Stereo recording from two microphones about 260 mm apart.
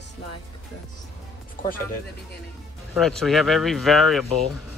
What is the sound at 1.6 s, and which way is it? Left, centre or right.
Speech, left.